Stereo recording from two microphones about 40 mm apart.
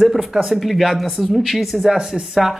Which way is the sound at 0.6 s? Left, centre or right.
Centre.